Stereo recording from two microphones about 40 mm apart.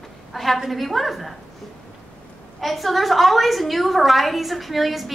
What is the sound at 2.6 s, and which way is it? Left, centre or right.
A woman's voice, centre.